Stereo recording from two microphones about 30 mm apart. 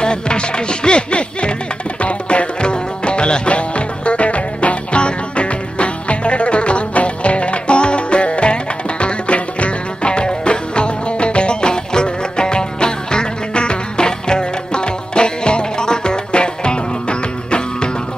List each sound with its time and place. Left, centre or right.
0.0 s music: left